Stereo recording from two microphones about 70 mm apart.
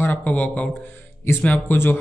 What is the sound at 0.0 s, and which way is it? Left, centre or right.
Speech, left.